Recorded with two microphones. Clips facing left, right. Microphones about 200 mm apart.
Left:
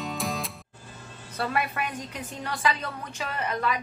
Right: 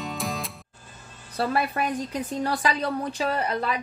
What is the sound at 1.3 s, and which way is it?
A woman's voice, 35° right (ahead or behind).